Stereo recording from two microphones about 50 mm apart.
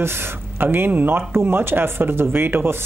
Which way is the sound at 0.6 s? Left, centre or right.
Right.